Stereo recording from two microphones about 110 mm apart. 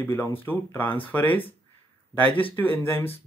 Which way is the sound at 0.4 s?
15° left (ahead or behind).